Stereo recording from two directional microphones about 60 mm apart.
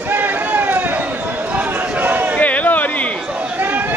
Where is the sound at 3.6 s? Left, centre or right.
Right.